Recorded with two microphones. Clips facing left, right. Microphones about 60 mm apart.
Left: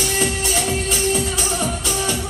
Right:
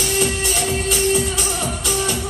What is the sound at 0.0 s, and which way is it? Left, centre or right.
Music, left.